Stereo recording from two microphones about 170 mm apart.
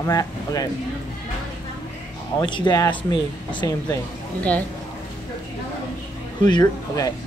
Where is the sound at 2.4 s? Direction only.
25° left (ahead or behind).